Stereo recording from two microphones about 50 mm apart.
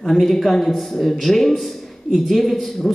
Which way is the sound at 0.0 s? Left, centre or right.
Centre.